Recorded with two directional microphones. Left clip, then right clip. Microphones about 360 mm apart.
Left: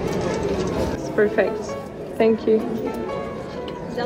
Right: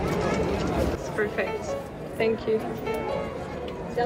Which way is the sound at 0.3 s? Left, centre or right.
Left.